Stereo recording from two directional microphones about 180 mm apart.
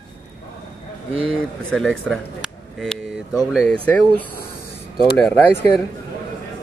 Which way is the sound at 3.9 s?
5° left (ahead or behind).